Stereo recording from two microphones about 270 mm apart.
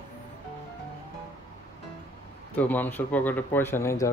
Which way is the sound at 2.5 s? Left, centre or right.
Centre.